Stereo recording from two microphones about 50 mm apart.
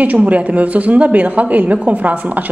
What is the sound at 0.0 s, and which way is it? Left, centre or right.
A woman's voice, right.